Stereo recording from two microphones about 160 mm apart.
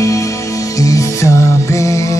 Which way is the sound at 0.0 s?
20° left (ahead or behind).